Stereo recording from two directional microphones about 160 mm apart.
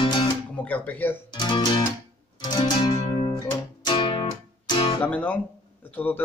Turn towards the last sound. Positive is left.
turn(degrees=10)  # may be behind; listen again after turning